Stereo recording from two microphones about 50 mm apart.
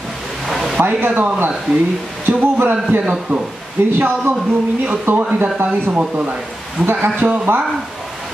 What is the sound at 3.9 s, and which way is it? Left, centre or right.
A man's voice, right.